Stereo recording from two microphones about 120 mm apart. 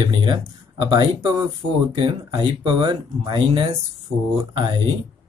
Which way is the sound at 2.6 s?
40° right (ahead or behind).